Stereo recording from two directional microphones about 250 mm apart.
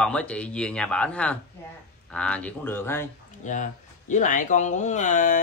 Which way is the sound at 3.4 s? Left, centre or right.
Left.